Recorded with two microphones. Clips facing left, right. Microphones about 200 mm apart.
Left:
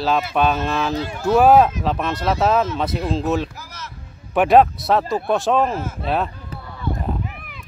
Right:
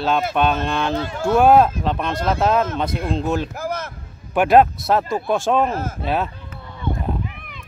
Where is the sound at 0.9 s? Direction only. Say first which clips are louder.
Left 1 dB; 55° right (ahead or behind).